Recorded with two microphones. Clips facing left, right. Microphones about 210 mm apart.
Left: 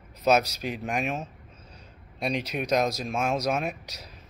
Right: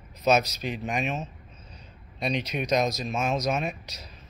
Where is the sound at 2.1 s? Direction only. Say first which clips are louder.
Even; 5° left (ahead or behind).